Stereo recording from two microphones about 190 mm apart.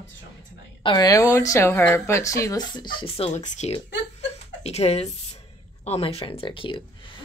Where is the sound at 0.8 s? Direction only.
20° left (ahead or behind); by 3.8 s 40° left (ahead or behind).